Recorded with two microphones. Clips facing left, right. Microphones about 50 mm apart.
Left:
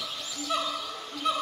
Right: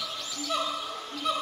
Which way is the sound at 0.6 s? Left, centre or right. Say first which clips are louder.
Right 1 dB; centre.